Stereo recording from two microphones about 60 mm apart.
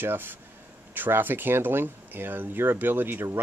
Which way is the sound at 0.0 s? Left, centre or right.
Right.